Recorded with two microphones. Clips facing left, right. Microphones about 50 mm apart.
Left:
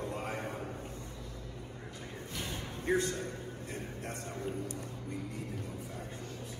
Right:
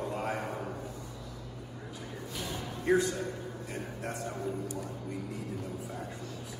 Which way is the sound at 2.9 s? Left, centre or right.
Left.